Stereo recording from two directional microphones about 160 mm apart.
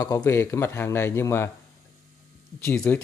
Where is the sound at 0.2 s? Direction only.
15° left (ahead or behind).